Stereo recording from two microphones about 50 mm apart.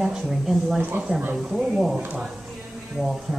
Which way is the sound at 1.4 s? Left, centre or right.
Centre.